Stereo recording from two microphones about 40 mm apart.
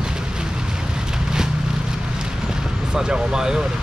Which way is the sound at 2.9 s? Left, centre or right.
Right.